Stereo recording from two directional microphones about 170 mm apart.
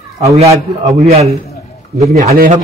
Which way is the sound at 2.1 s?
60° right (ahead or behind).